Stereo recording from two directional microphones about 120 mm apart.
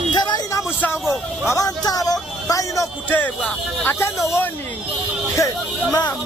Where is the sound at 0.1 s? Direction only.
35° left (ahead or behind).